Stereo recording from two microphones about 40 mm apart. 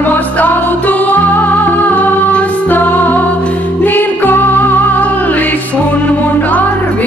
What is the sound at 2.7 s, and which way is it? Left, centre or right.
Music, left.